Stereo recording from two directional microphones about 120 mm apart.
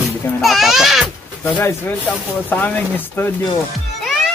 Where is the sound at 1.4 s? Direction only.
20° left (ahead or behind).